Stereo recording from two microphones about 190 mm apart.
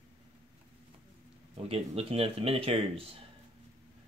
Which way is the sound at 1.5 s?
30° right (ahead or behind).